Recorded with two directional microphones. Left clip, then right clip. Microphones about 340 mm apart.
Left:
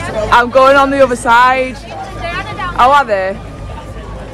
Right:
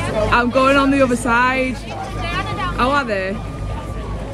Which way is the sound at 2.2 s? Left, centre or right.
Centre.